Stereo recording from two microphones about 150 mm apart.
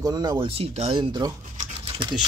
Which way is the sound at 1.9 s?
30° right (ahead or behind).